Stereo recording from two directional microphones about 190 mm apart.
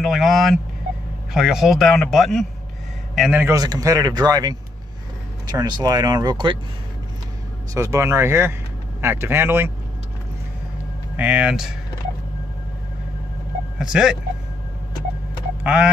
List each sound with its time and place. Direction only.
0.0 s speech: centre (ahead or behind)
3.4 s speech: 20° right (ahead or behind)
7.7 s speech: 15° right (ahead or behind)
11.1 s speech: 5° right (ahead or behind)
13.7 s speech: 5° right (ahead or behind)
15.6 s a sound: 5° right (ahead or behind)